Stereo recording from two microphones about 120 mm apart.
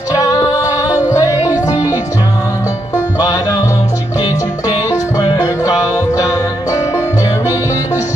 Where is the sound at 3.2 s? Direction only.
30° left (ahead or behind).